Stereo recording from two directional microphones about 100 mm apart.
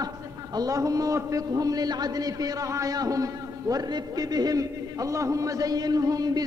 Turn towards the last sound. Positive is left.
turn(degrees=-40)  # may be behind; listen again after turning